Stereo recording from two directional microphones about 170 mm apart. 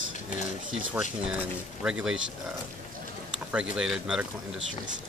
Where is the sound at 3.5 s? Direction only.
5° right (ahead or behind).